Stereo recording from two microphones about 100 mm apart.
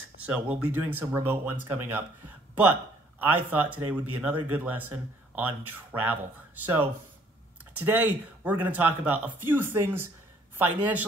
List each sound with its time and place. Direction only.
0.2 s speech: 15° right (ahead or behind)
3.2 s speech: 20° right (ahead or behind)